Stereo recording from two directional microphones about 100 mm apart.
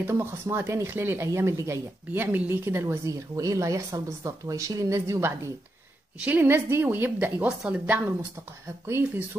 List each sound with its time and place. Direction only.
0.1 s speech: 25° right (ahead or behind)
6.2 s a woman's voice: 20° right (ahead or behind)
8.8 s speech: 25° right (ahead or behind)